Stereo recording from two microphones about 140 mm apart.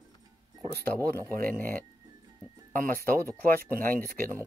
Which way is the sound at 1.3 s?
90° right.